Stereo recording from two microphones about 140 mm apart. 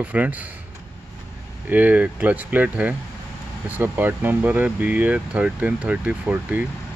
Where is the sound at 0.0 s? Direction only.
10° right (ahead or behind).